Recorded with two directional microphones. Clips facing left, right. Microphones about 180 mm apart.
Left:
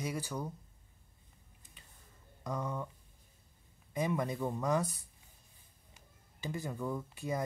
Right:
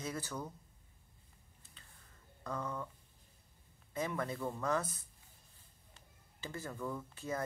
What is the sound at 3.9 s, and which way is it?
Speech, 15° left (ahead or behind).